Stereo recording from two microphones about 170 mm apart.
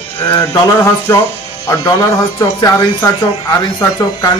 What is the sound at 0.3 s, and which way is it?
Speech, 15° left (ahead or behind).